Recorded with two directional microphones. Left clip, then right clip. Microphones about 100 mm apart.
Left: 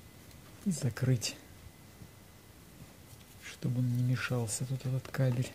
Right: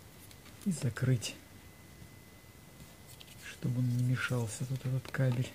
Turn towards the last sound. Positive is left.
turn(degrees=10)  # may be behind; listen again after turning